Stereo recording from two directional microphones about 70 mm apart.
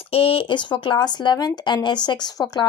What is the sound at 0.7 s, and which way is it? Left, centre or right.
Speech, left.